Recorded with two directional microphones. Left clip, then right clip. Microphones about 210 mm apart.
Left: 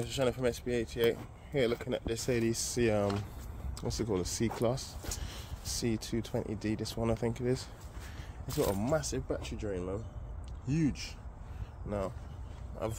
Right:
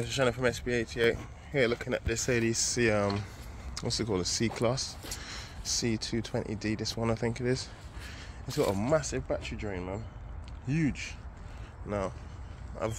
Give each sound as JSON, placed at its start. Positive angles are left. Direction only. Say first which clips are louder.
{"t": 0.0, "sound": "speech", "louder": "right 3 dB", "side_deg": 0}
{"t": 8.8, "sound": "speech", "louder": "right 4 dB", "side_deg": -20}